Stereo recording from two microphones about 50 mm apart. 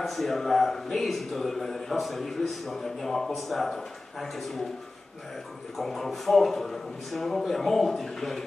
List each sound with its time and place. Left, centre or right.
0.0 s a man's voice: centre
5.8 s a man's voice: centre